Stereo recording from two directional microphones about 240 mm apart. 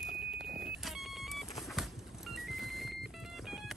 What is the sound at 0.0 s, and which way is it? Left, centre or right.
Vehicle, right.